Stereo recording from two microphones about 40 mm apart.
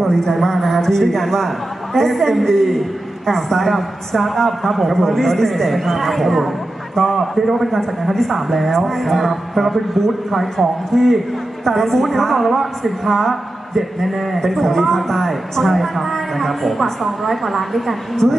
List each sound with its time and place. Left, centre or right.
0.0 s a woman's voice: centre